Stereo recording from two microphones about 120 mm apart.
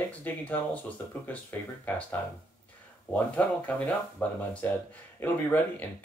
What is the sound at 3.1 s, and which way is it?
Speech, 10° left (ahead or behind).